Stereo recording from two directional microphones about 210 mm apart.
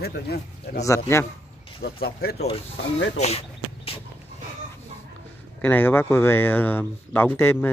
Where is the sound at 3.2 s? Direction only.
30° left (ahead or behind).